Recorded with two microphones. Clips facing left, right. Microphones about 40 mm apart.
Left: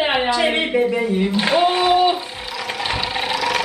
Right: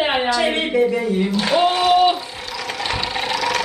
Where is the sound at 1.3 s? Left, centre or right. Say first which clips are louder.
Even; left.